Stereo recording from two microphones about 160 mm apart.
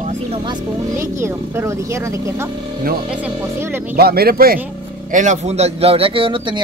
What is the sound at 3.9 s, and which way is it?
Speech, 75° right (ahead or behind).